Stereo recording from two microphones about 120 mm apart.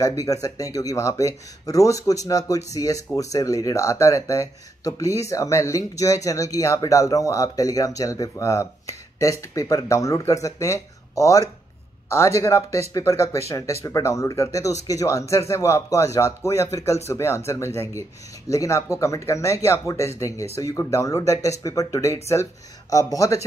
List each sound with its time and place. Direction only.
0.0 s speech: 30° left (ahead or behind)